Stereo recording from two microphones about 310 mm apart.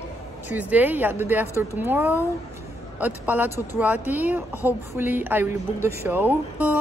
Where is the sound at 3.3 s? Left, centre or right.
Centre.